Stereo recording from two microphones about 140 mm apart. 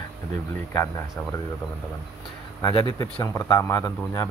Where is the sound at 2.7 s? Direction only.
35° left (ahead or behind).